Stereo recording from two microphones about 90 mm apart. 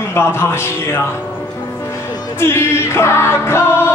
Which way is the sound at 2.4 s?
25° left (ahead or behind).